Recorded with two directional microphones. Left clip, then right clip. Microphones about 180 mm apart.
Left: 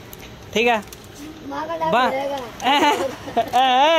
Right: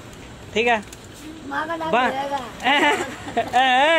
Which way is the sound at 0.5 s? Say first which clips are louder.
Left 1 dB; 25° left (ahead or behind).